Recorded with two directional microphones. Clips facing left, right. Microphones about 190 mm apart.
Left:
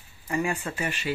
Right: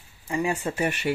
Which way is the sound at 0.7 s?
20° right (ahead or behind).